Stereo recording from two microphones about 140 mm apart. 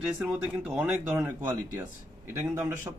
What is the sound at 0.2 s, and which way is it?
Speech, 10° right (ahead or behind).